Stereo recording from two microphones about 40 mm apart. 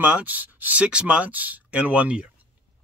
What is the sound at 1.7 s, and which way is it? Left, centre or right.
Speech, right.